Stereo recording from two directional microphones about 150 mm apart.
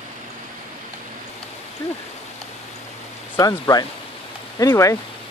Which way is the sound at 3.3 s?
25° left (ahead or behind).